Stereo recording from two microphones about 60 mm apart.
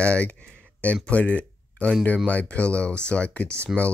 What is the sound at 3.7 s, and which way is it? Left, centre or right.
Speech, centre.